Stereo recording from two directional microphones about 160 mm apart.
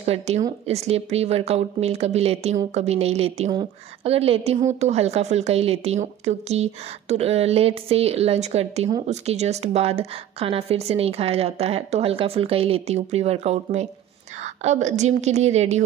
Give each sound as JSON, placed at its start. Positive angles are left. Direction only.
{"t": 0.0, "sound": "a woman's voice", "side_deg": -40}